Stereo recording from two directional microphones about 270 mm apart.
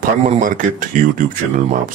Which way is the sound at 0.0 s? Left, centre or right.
Right.